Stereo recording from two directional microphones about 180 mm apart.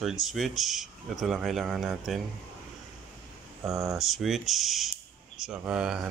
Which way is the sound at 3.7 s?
15° right (ahead or behind).